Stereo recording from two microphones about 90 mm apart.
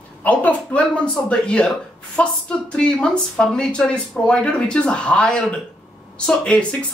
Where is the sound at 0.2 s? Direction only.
15° left (ahead or behind).